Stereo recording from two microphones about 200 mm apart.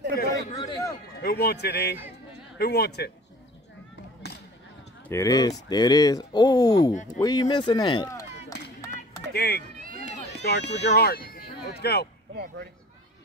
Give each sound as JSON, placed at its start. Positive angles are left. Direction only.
{"t": 0.6, "sound": "a man's voice", "side_deg": 15}
{"t": 1.2, "sound": "a man's voice", "side_deg": 50}
{"t": 5.0, "sound": "speech", "side_deg": 15}
{"t": 9.3, "sound": "speech", "side_deg": 50}